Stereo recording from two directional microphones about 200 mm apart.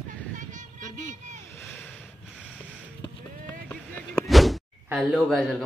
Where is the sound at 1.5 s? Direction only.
10° left (ahead or behind).